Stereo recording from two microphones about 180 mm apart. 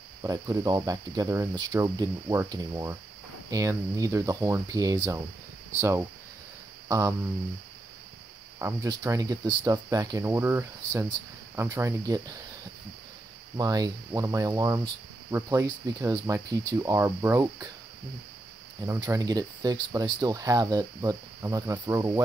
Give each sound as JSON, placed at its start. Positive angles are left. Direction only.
{"t": 0.2, "sound": "speech", "side_deg": -20}
{"t": 8.5, "sound": "speech", "side_deg": -15}
{"t": 13.6, "sound": "speech", "side_deg": -20}
{"t": 18.9, "sound": "speech", "side_deg": -20}